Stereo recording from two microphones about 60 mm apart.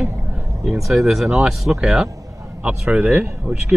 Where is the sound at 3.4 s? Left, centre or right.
Centre.